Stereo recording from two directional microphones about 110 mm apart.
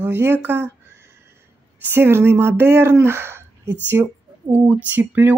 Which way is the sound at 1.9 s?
20° right (ahead or behind).